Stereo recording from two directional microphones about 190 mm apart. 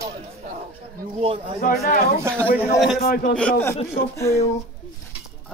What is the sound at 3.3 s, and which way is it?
A man's voice, 5° left (ahead or behind).